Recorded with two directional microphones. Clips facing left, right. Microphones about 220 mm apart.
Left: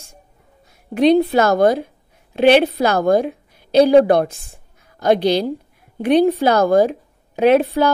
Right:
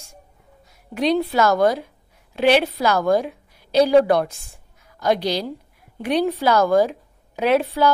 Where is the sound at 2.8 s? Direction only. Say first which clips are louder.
Left 3 dB; 50° left (ahead or behind).